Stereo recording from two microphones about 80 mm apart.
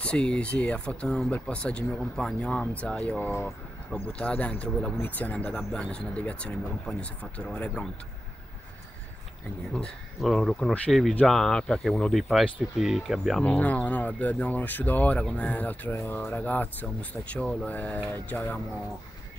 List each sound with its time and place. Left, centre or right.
0.0 s speech: centre
9.8 s speech: centre
12.1 s speech: centre
13.4 s speech: centre